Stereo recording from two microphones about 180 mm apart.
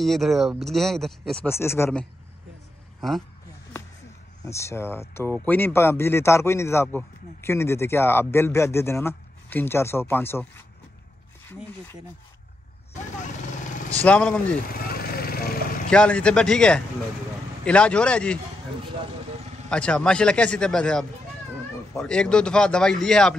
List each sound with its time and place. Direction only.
0.0 s speech: centre (ahead or behind)
4.5 s speech: 15° left (ahead or behind)
14.0 s speech: 5° left (ahead or behind)
14.7 s a sound: 55° left (ahead or behind)
15.9 s speech: 5° left (ahead or behind)
19.7 s speech: 5° left (ahead or behind)